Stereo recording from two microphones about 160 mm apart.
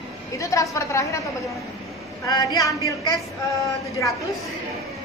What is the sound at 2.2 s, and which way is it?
Speech, 20° left (ahead or behind).